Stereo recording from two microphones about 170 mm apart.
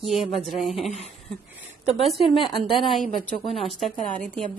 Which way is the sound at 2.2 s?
35° left (ahead or behind).